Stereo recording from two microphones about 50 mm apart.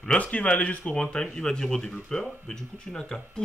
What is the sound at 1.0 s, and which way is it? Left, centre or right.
A man's voice, centre.